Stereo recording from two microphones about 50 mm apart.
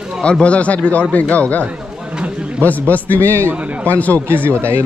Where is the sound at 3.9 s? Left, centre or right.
Left.